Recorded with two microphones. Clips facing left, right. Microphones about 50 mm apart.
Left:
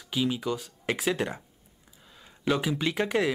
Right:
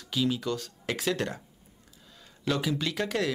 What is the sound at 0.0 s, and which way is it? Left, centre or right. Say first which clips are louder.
Speech: even; centre.